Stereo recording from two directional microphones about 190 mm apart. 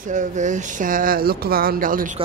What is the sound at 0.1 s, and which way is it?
Speech, 40° right (ahead or behind).